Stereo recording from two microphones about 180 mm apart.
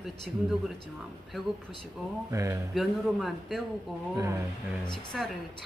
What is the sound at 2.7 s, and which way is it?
Speech, centre (ahead or behind).